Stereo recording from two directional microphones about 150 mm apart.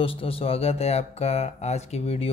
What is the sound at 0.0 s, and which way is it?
Speech, 40° left (ahead or behind).